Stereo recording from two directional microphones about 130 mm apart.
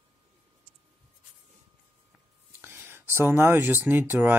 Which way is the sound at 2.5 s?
15° right (ahead or behind).